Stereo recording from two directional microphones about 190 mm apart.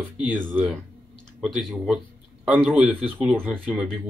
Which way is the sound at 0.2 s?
10° right (ahead or behind).